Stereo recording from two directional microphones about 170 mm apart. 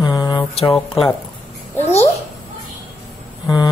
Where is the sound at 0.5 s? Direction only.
35° left (ahead or behind).